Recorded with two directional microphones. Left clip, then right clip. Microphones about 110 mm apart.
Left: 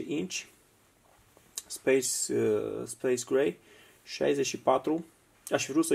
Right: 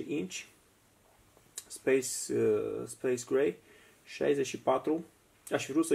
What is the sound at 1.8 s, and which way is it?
Speech, 20° left (ahead or behind).